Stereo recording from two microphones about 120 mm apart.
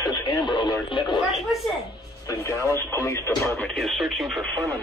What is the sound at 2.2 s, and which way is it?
Speech, 25° left (ahead or behind).